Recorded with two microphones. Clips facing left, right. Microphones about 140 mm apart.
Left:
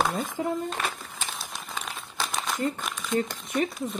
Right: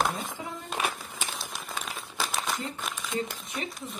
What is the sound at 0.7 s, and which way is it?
Speech, 10° right (ahead or behind).